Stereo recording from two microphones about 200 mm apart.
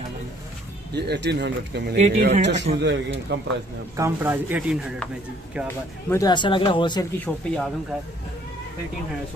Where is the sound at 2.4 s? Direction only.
60° right (ahead or behind).